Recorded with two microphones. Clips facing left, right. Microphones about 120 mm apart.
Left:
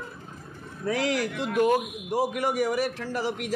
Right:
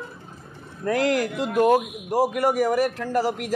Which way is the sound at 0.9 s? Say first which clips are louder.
Right 5 dB; 45° right (ahead or behind).